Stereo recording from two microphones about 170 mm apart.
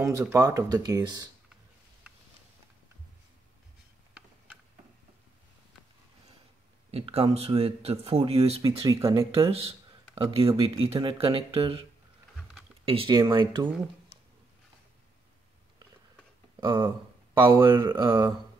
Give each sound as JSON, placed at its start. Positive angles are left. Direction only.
{"t": 0.0, "sound": "speech", "side_deg": -20}
{"t": 6.9, "sound": "speech", "side_deg": -35}
{"t": 8.8, "sound": "speech", "side_deg": -15}
{"t": 9.1, "sound": "speech", "side_deg": -35}
{"t": 12.8, "sound": "speech", "side_deg": -30}
{"t": 16.5, "sound": "a sound", "side_deg": -25}
{"t": 17.3, "sound": "speech", "side_deg": -30}